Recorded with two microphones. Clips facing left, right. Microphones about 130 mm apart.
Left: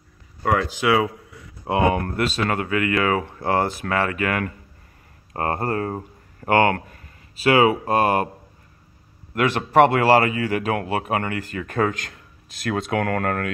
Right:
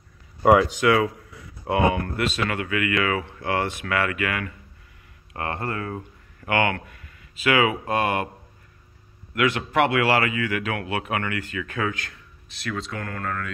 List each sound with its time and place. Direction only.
0.8 s speech: 15° left (ahead or behind)
2.0 s speech: 40° left (ahead or behind)
9.3 s speech: 40° left (ahead or behind); by 13.5 s 70° left (ahead or behind)